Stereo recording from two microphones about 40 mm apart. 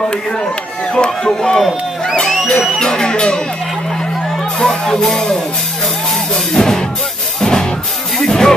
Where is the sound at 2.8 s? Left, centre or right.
Centre.